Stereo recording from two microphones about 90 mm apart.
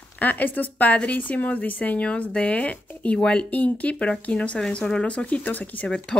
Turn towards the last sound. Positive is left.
turn(degrees=15)  # may be behind; listen again after turning